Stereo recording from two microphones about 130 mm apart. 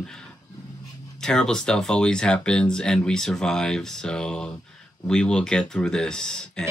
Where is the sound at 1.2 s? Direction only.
5° left (ahead or behind).